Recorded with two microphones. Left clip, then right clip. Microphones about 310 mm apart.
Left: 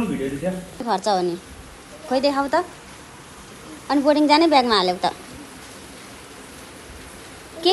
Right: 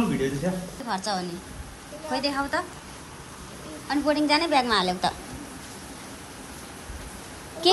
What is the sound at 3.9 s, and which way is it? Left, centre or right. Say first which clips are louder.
A woman's voice: left 6 dB; centre.